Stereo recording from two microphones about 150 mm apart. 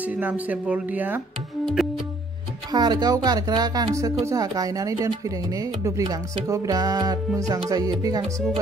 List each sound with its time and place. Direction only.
0.0 s speech: 10° right (ahead or behind)
2.7 s speech: 25° right (ahead or behind)